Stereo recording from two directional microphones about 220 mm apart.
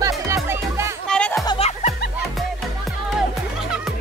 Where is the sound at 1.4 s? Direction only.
25° left (ahead or behind).